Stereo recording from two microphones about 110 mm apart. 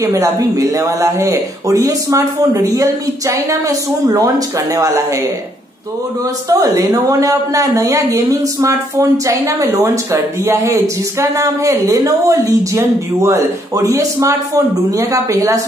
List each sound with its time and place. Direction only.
0.0 s speech: 30° right (ahead or behind)
6.5 s speech: 30° right (ahead or behind)